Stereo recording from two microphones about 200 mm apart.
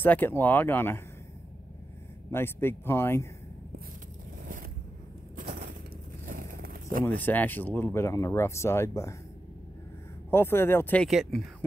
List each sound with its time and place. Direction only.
0.0 s speech: 10° left (ahead or behind)
2.3 s speech: 10° left (ahead or behind)
5.3 s crushing: 45° right (ahead or behind)
6.2 s a sound: 45° right (ahead or behind)
7.1 s speech: 10° left (ahead or behind)
10.3 s speech: 10° left (ahead or behind)